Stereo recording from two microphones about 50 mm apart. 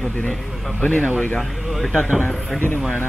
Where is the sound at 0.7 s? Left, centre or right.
Centre.